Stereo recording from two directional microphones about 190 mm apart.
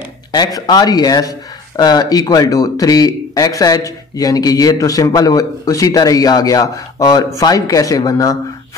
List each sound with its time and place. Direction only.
0.3 s speech: 20° left (ahead or behind)